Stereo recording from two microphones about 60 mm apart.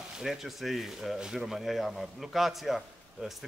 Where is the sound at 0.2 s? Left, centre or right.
Centre.